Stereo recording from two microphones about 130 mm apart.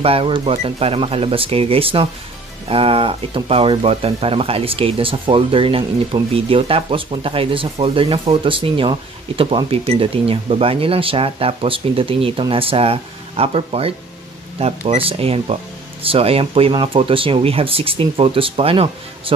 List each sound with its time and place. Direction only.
0.0 s speech: 45° right (ahead or behind)